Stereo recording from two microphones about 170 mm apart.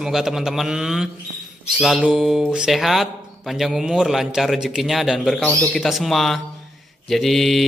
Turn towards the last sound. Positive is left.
turn(degrees=0)  # may be behind; listen again after turning